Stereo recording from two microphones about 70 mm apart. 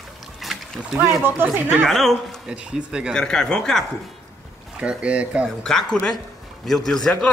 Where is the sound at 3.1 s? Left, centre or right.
Centre.